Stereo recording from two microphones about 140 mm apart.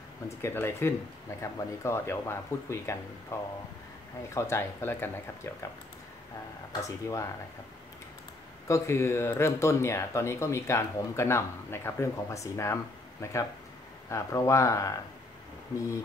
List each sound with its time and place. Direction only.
0.4 s speech: 15° left (ahead or behind)
6.8 s speech: 25° left (ahead or behind)
8.6 s speech: 20° left (ahead or behind)